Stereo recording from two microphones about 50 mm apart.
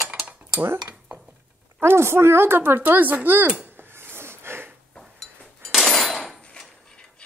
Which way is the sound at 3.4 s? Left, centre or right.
Right.